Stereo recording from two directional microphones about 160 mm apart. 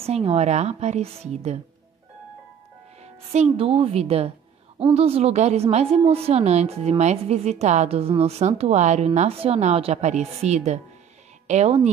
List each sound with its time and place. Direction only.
0.0 s a woman's voice: 40° right (ahead or behind)
3.0 s a woman's voice: 45° right (ahead or behind)